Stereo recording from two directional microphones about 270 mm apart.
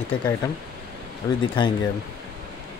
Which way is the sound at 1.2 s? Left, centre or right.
Centre.